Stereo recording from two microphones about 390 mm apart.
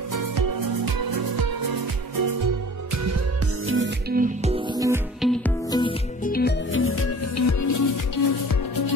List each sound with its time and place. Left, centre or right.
0.1 s music: right
3.6 s music: right
4.7 s music: centre
5.7 s music: centre; by 7.9 s left